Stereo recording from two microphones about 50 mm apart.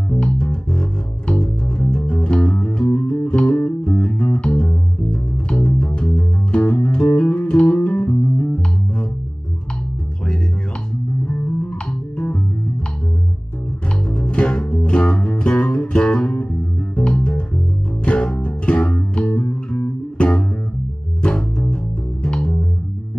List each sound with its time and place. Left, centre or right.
0.2 s music: centre
11.2 s music: left
14.0 s music: centre
16.9 s bass guitar: left
18.0 s music: centre
22.2 s bass guitar: left